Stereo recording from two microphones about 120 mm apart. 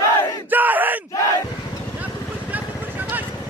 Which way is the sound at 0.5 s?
15° right (ahead or behind).